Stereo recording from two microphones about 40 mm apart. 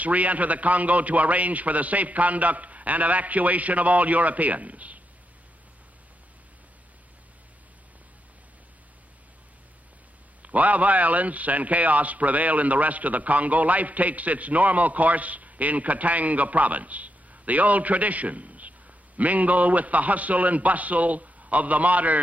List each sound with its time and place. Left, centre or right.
0.0 s a man's voice: right
10.4 s a man's voice: right